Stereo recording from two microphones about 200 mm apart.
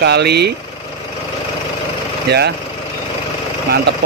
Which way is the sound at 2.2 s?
55° right (ahead or behind).